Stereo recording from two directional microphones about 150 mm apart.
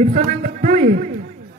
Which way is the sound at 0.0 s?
50° right (ahead or behind).